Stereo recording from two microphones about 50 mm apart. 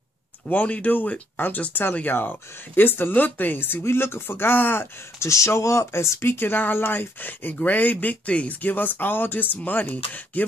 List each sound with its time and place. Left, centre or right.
0.5 s speech: left
5.2 s speech: left